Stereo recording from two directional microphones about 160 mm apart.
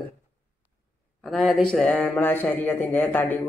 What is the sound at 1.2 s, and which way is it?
Speech, centre (ahead or behind).